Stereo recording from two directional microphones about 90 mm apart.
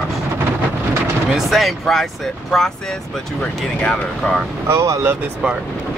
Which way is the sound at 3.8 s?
10° left (ahead or behind).